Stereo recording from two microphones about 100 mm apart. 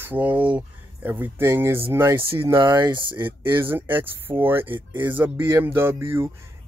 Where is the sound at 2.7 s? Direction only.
45° right (ahead or behind).